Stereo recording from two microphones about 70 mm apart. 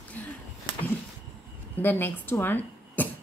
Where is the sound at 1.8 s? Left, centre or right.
Left.